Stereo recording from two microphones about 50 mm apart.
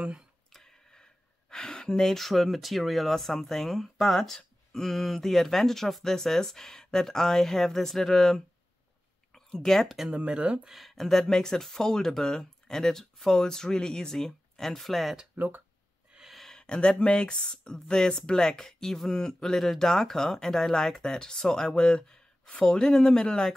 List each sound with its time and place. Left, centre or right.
0.5 s tick-tock: centre
1.5 s speech: centre
10.1 s speech: right
10.7 s speech: centre
15.3 s speech: right
16.3 s a sound: centre
16.5 s speech: centre